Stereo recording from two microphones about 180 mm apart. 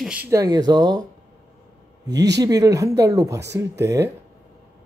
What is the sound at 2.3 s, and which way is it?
A man's voice, 20° right (ahead or behind).